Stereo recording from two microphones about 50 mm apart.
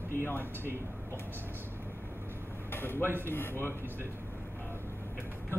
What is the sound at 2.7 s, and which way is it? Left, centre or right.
Speech, left.